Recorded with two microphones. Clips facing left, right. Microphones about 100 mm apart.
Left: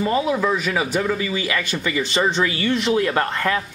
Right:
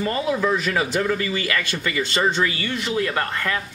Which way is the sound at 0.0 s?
10° left (ahead or behind).